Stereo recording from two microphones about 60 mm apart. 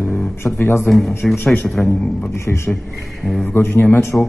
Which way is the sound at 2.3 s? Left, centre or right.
Left.